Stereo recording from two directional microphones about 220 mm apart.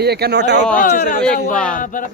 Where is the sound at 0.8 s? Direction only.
40° left (ahead or behind).